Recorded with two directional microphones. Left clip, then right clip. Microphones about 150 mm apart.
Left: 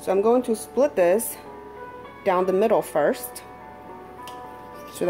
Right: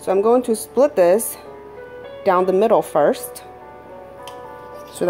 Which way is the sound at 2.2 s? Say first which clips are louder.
Right 5 dB; 15° right (ahead or behind).